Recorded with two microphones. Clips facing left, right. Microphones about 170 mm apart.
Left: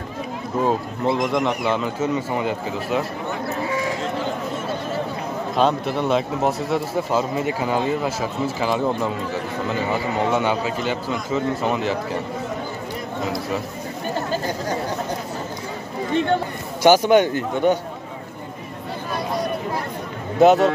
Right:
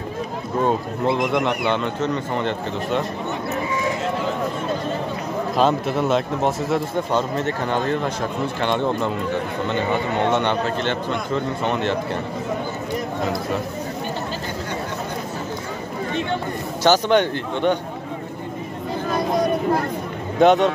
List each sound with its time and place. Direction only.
0.6 s a man's voice: centre (ahead or behind)
5.6 s a man's voice: centre (ahead or behind)
16.8 s a man's voice: 10° left (ahead or behind)
20.3 s a man's voice: 5° left (ahead or behind)